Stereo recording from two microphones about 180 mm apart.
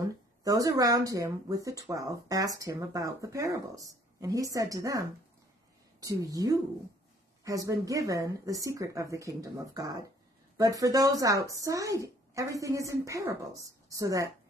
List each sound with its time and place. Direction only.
0.4 s speech: 20° right (ahead or behind)
6.0 s speech: 20° right (ahead or behind)